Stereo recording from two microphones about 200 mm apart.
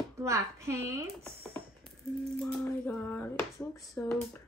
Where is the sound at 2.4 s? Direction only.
5° left (ahead or behind).